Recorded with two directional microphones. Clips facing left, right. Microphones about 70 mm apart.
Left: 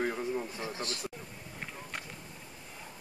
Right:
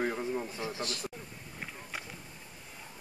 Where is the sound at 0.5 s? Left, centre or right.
Left.